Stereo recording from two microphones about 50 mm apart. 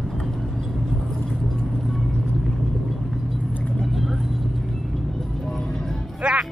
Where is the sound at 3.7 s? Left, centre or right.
Centre.